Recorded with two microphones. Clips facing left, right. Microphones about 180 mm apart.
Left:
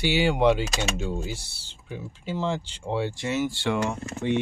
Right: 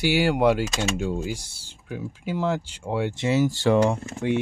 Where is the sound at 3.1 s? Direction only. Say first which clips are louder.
Right 5 dB; 25° right (ahead or behind).